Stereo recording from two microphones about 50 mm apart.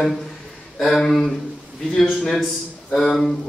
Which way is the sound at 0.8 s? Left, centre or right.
Centre.